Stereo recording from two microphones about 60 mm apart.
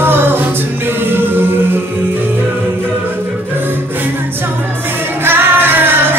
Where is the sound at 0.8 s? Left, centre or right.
Right.